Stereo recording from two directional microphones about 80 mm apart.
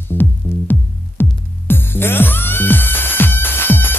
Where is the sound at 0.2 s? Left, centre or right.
Left.